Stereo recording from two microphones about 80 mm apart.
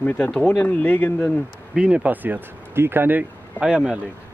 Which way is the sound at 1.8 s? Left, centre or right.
Centre.